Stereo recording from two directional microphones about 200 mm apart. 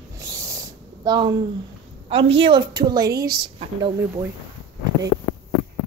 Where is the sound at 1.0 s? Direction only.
20° right (ahead or behind).